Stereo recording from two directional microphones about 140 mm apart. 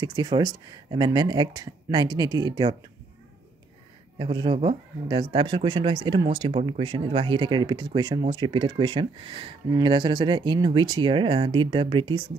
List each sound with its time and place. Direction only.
0.0 s speech: 30° right (ahead or behind)
4.2 s speech: 35° right (ahead or behind)